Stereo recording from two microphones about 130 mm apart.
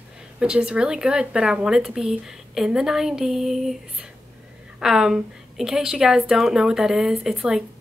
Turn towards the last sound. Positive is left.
turn(degrees=-5)  # may be behind; listen again after turning